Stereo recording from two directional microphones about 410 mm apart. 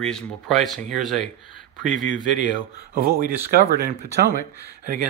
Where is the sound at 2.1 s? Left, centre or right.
Left.